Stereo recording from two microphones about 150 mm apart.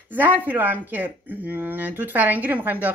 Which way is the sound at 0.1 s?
10° right (ahead or behind).